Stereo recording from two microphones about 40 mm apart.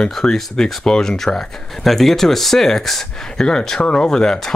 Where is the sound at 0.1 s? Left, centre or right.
Centre.